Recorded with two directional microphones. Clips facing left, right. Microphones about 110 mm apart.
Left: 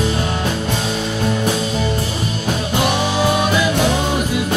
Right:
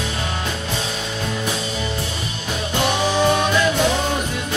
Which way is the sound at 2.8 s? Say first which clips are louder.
Right 1 dB; 5° left (ahead or behind).